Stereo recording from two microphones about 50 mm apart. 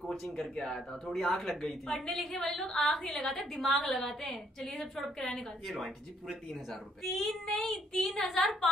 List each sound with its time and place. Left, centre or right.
0.0 s a woman's voice: centre
3.5 s a woman's voice: centre
7.0 s a woman's voice: centre